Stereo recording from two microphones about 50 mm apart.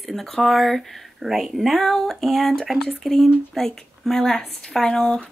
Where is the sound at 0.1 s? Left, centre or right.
Centre.